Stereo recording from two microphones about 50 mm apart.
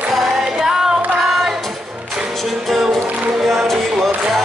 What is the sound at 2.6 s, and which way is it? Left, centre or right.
Music, centre.